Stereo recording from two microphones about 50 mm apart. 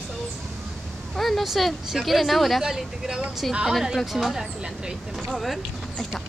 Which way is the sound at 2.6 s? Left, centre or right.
Centre.